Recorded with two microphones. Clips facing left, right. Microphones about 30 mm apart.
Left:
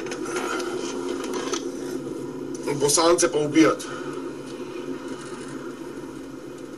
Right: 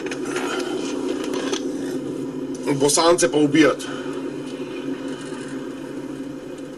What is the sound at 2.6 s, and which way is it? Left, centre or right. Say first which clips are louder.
Speech: right 3 dB; right.